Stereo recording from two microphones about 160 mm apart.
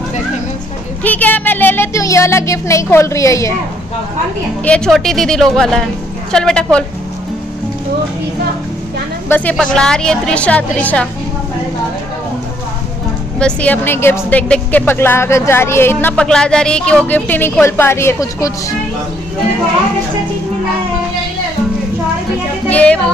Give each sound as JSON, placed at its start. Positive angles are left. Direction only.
{"t": 1.0, "sound": "a sound", "side_deg": 10}
{"t": 4.6, "sound": "a woman's voice", "side_deg": 5}
{"t": 9.3, "sound": "a woman's voice", "side_deg": 10}
{"t": 13.4, "sound": "a woman's voice", "side_deg": 10}
{"t": 22.7, "sound": "speech", "side_deg": 10}